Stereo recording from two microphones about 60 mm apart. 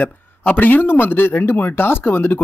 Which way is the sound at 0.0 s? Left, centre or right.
Left.